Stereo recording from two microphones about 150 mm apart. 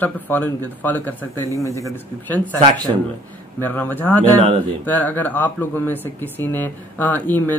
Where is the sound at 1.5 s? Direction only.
20° left (ahead or behind).